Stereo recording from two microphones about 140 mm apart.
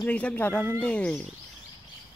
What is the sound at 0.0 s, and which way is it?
Speech, 10° left (ahead or behind).